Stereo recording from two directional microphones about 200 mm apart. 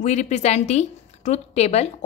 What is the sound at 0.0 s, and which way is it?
Speech, 35° left (ahead or behind).